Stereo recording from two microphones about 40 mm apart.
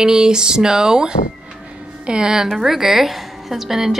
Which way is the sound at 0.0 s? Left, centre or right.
Centre.